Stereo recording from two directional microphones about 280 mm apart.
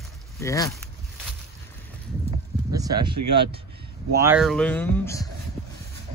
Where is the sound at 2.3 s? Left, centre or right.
Centre.